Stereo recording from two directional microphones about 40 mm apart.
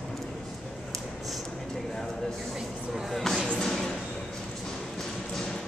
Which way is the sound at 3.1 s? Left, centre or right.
Centre.